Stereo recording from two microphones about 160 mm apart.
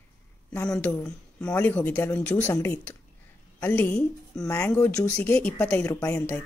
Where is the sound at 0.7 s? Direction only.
5° left (ahead or behind).